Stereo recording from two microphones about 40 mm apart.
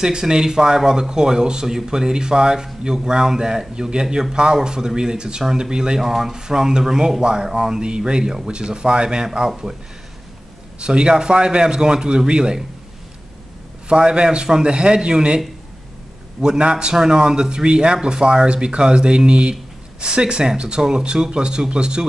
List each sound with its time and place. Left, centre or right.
0.0 s speech: centre
5.9 s speech: centre
10.8 s speech: right
13.8 s speech: right